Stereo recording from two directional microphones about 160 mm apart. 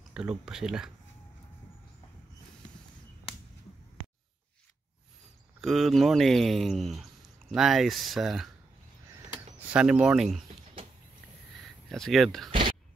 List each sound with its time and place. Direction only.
0.1 s speech: 5° right (ahead or behind)
5.6 s speech: centre (ahead or behind)
11.9 s speech: centre (ahead or behind)
12.4 s a sound: 30° right (ahead or behind)